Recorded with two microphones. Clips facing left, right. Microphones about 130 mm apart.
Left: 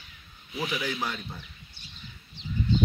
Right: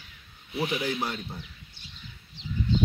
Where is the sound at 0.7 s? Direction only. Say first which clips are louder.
Right 1 dB; 45° right (ahead or behind).